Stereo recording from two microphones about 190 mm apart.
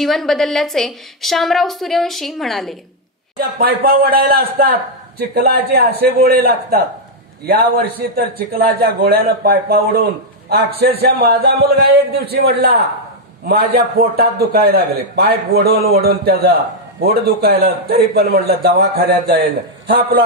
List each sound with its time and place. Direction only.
0.0 s a woman's voice: centre (ahead or behind)
3.3 s a man's voice: 50° right (ahead or behind)
8.0 s a man's voice: 60° right (ahead or behind)